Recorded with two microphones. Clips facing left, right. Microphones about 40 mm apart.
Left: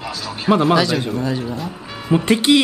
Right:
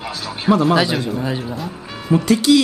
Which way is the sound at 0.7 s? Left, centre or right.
Centre.